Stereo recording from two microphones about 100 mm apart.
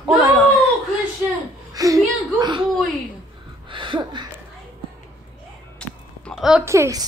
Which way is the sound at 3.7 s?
55° right (ahead or behind).